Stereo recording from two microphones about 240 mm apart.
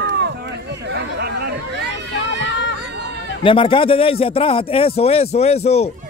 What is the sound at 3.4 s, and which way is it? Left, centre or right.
Speech, left.